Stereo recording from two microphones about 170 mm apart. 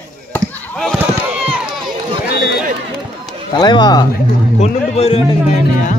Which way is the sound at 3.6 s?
25° left (ahead or behind).